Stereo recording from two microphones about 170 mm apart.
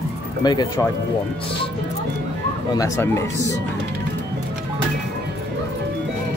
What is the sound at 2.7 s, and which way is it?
Speech, 15° left (ahead or behind).